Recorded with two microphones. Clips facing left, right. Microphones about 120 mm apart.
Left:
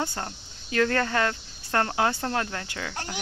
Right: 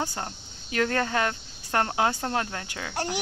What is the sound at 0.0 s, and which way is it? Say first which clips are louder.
Speech: left 1 dB; 10° right (ahead or behind).